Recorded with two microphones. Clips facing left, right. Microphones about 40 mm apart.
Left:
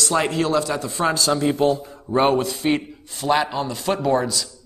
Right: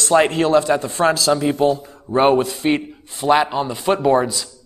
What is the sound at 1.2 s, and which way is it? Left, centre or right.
Speech, centre.